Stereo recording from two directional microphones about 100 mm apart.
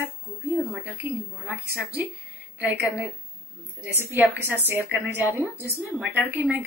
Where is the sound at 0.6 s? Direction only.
15° right (ahead or behind).